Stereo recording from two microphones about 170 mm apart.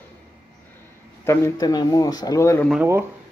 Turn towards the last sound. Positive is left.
turn(degrees=-15)  # may be behind; listen again after turning